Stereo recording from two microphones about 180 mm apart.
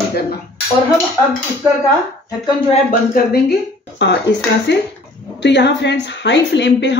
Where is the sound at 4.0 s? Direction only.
75° left (ahead or behind).